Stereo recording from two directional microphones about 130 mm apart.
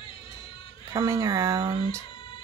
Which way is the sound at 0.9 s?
25° right (ahead or behind).